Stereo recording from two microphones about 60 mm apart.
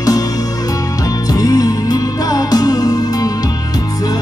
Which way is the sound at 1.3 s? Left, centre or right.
Left.